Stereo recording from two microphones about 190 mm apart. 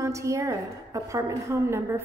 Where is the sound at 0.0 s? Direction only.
15° right (ahead or behind).